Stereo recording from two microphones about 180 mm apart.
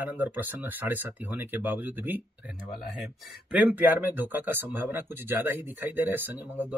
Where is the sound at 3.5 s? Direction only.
10° right (ahead or behind).